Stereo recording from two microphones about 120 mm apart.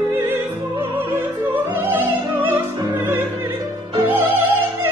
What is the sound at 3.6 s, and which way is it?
Opera, 40° right (ahead or behind).